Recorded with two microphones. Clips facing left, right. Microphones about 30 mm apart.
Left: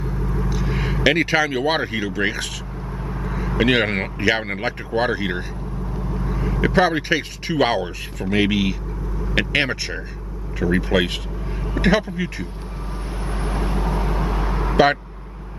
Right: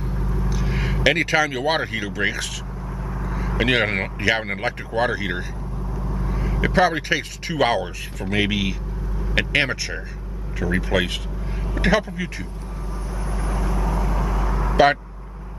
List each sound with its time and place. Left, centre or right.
0.0 s vehicle: centre
0.5 s speech: centre
3.1 s vehicle: centre
3.5 s speech: centre
5.9 s vehicle: left
6.6 s speech: centre
13.2 s vehicle: left